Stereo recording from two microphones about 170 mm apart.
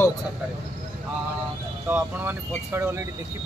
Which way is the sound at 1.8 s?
10° right (ahead or behind).